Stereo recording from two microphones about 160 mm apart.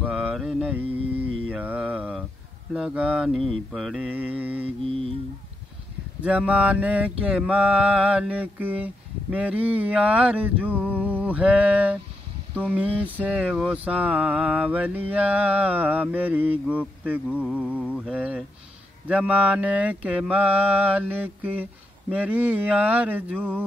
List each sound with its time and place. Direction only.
0.0 s mantra: 5° right (ahead or behind)
4.6 s music: 35° right (ahead or behind)
6.2 s mantra: 10° right (ahead or behind)